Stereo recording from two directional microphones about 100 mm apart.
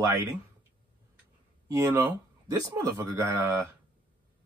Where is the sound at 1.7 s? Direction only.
30° right (ahead or behind).